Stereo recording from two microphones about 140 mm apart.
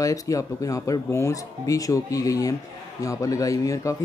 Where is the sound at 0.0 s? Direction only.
25° left (ahead or behind).